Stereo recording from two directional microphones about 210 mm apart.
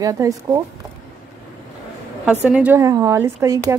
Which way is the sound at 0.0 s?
15° right (ahead or behind).